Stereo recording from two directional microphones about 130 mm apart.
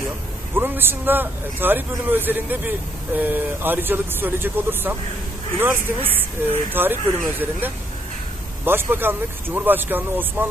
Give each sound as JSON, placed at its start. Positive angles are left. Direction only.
{"t": 0.6, "sound": "a man's voice", "side_deg": -15}